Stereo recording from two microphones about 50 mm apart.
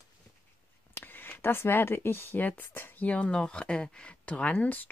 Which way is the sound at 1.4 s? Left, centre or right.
Left.